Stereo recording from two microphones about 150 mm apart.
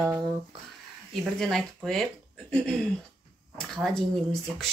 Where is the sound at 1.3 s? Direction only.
Centre (ahead or behind).